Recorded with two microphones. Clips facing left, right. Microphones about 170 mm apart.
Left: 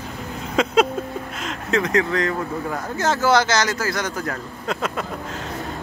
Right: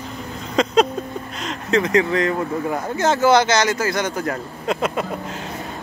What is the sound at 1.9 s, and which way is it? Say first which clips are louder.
A man's voice: right 3 dB; 10° right (ahead or behind).